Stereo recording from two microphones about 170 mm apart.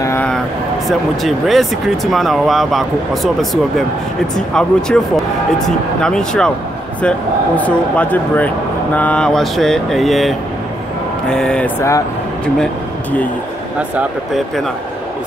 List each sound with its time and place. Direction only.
0.0 s vehicle: 15° left (ahead or behind)
0.8 s speech: centre (ahead or behind)
13.7 s speech: 10° right (ahead or behind)